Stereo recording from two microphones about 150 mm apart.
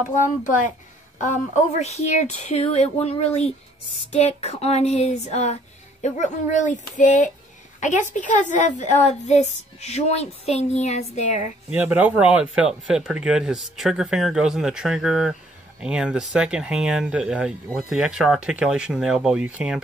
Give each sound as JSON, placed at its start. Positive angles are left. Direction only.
{"t": 0.2, "sound": "a woman's voice", "side_deg": 60}
{"t": 1.2, "sound": "child singing", "side_deg": 55}
{"t": 6.0, "sound": "a woman's voice", "side_deg": 55}
{"t": 9.0, "sound": "child singing", "side_deg": 50}
{"t": 11.7, "sound": "speech", "side_deg": -10}